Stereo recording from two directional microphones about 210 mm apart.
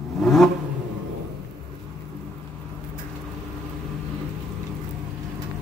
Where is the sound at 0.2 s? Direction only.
Centre (ahead or behind).